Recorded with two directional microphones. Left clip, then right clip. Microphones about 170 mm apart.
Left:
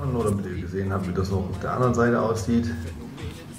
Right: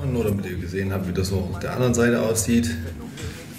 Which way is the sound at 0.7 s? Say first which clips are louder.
Right 1 dB; 30° right (ahead or behind).